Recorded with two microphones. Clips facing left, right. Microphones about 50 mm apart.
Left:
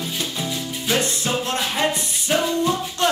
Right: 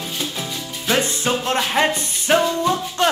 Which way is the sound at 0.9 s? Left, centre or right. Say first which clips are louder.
Right 3 dB; right.